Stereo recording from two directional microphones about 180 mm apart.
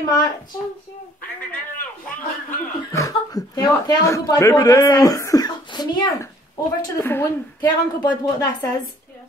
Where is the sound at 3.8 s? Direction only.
20° left (ahead or behind).